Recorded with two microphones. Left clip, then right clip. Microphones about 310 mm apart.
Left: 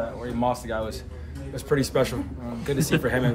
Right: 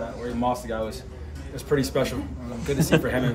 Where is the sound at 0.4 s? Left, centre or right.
Centre.